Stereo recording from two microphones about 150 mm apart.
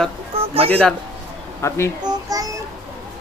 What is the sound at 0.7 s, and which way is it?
Speech, 5° left (ahead or behind).